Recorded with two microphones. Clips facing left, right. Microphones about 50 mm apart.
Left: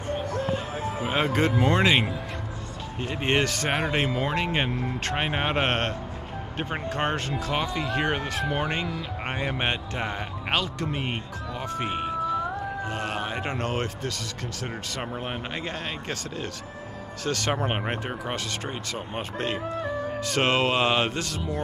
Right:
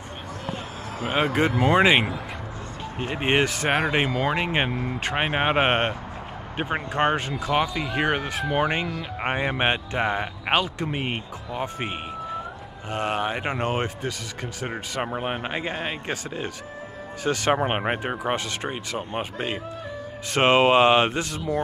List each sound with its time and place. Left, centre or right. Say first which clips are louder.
1.0 s a man's voice: right 2 dB; centre
9.2 s a man's voice: right 5 dB; right